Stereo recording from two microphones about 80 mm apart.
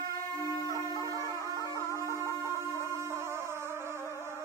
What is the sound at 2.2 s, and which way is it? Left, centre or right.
Music, right.